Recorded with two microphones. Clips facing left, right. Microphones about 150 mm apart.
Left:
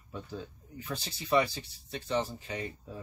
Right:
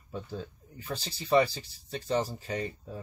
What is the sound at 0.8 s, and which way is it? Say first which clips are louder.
Speech: right 1 dB; 35° right (ahead or behind).